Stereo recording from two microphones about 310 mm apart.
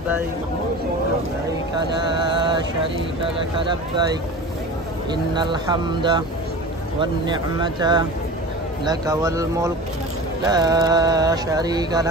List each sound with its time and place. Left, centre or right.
2.1 s mantra: centre
5.1 s music: centre